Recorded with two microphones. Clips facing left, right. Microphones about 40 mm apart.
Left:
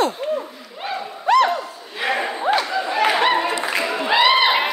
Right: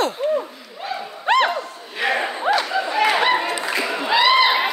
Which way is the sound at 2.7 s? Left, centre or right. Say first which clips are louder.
Even; centre.